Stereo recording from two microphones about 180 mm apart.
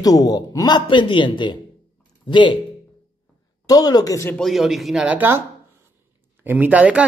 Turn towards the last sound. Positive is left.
turn(degrees=-10)  # may be behind; listen again after turning